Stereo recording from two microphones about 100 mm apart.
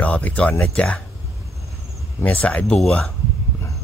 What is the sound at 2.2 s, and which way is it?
Speech, 15° left (ahead or behind).